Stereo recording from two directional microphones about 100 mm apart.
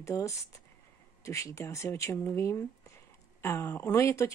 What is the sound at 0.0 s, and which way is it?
Speech, 30° left (ahead or behind).